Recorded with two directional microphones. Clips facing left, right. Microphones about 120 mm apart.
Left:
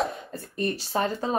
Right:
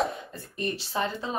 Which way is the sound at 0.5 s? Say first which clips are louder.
Left 3 dB; 40° left (ahead or behind).